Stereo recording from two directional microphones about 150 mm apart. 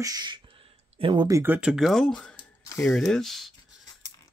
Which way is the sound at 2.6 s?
20° left (ahead or behind).